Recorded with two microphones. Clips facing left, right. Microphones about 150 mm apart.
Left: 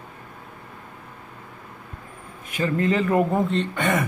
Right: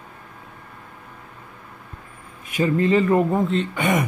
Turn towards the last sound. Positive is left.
turn(degrees=-15)  # may be behind; listen again after turning